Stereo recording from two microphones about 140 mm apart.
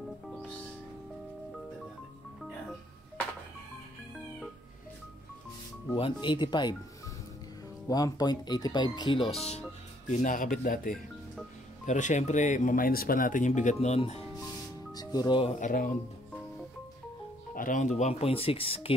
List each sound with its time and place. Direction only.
5.9 s speech: 35° left (ahead or behind)
7.9 s speech: 30° left (ahead or behind)
10.1 s speech: 70° left (ahead or behind)
11.8 s speech: 60° left (ahead or behind)
14.9 s music: 30° left (ahead or behind)
15.6 s speech: 75° left (ahead or behind)
17.6 s speech: 65° left (ahead or behind); by 18.9 s 45° left (ahead or behind)